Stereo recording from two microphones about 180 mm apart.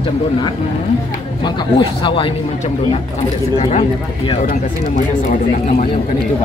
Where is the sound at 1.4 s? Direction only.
30° left (ahead or behind).